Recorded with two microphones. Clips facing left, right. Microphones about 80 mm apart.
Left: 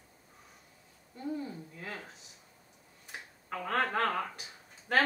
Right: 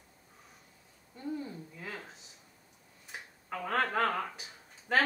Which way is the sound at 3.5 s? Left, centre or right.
Centre.